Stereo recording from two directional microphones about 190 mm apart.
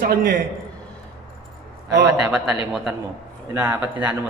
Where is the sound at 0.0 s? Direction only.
50° right (ahead or behind).